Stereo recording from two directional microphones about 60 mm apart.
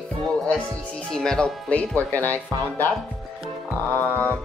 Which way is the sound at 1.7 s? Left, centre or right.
Left.